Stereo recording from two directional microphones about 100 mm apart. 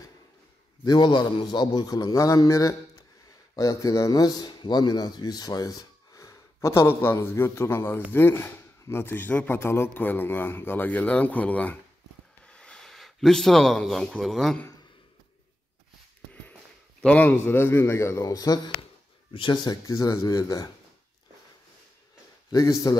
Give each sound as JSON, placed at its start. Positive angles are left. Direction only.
{"t": 0.8, "sound": "a man's voice", "side_deg": 50}
{"t": 17.0, "sound": "speech", "side_deg": 15}
{"t": 19.3, "sound": "speech", "side_deg": 50}
{"t": 22.5, "sound": "speech", "side_deg": 35}